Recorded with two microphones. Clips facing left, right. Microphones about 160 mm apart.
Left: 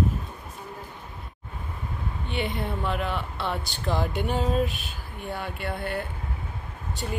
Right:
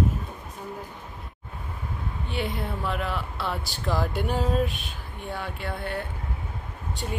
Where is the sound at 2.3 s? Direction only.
Centre (ahead or behind).